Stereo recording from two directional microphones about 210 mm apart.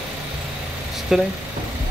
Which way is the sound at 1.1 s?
5° right (ahead or behind).